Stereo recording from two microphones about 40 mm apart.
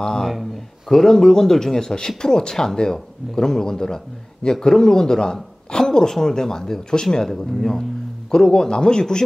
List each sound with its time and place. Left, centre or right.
0.2 s a man's voice: centre